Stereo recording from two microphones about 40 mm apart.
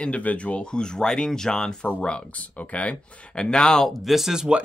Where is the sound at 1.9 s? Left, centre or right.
Left.